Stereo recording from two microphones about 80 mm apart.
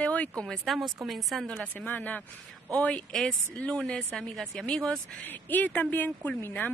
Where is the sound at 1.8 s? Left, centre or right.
Left.